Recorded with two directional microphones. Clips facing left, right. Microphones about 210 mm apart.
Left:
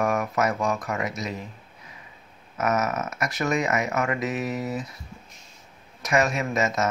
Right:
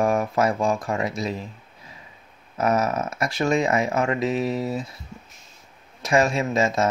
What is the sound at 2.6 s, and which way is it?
Speech, 30° right (ahead or behind).